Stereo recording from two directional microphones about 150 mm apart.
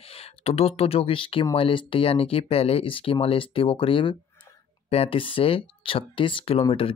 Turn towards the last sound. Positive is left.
turn(degrees=40)  # may be behind; listen again after turning